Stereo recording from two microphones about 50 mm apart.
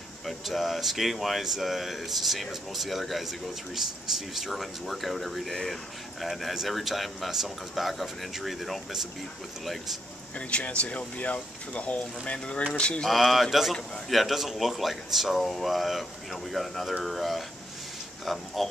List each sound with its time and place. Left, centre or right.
0.3 s speech: centre
10.5 s speech: left
13.0 s speech: centre